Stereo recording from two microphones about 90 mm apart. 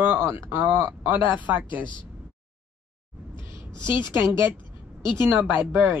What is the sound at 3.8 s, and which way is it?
Speech, 30° right (ahead or behind).